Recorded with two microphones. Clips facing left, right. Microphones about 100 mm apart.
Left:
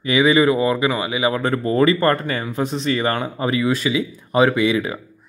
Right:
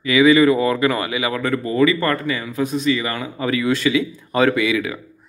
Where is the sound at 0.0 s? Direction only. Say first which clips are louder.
Right 2 dB; 25° left (ahead or behind).